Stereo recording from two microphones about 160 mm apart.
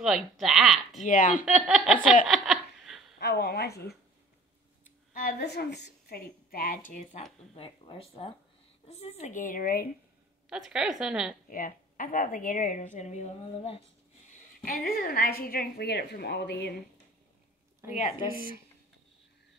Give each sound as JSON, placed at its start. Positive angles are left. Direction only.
{"t": 0.0, "sound": "speech", "side_deg": 0}
{"t": 1.0, "sound": "a woman's voice", "side_deg": 55}
{"t": 1.4, "sound": "speech", "side_deg": 0}
{"t": 2.2, "sound": "a sound", "side_deg": 0}
{"t": 3.2, "sound": "a woman's voice", "side_deg": 85}
{"t": 5.1, "sound": "a woman's voice", "side_deg": 80}
{"t": 7.5, "sound": "a woman's voice", "side_deg": 35}
{"t": 10.5, "sound": "speech", "side_deg": -5}
{"t": 11.4, "sound": "a woman's voice", "side_deg": 60}
{"t": 14.6, "sound": "a woman's voice", "side_deg": 65}